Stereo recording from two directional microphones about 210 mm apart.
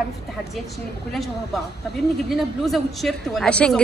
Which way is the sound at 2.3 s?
Centre (ahead or behind).